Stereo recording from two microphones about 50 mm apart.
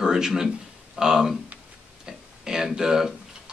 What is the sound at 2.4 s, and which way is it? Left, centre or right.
Speech, centre.